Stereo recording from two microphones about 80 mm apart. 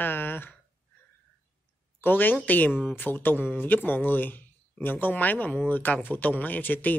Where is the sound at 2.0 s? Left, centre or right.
Left.